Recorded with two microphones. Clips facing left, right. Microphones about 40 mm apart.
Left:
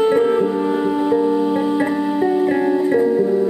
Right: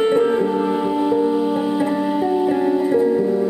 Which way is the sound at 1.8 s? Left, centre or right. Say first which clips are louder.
Left 1 dB; centre.